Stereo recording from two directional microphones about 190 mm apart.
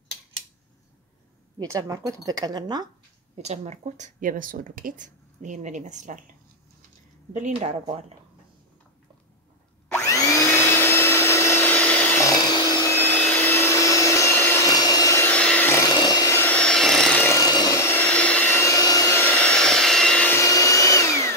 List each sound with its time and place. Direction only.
1.6 s speech: 20° right (ahead or behind)
3.4 s speech: 35° right (ahead or behind)
7.3 s speech: 40° right (ahead or behind)
10.0 s vacuum cleaner: 15° left (ahead or behind)
15.9 s a sound: 20° left (ahead or behind)
17.5 s vacuum cleaner: 20° left (ahead or behind)